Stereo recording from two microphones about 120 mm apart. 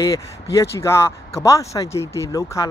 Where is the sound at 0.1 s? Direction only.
25° left (ahead or behind).